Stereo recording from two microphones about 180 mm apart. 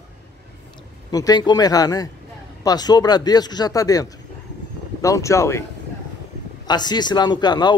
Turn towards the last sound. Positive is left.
turn(degrees=25)  # may be behind; listen again after turning